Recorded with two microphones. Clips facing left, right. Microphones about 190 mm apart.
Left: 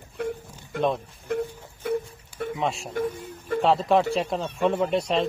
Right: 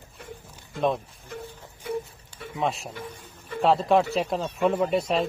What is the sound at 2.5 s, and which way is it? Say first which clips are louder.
Speech: even; centre (ahead or behind).